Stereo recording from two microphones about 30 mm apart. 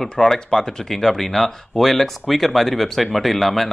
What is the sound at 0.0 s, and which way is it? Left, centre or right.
Speech, centre.